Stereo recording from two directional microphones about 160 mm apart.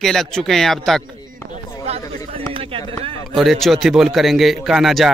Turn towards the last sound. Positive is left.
turn(degrees=0)  # may be behind; listen again after turning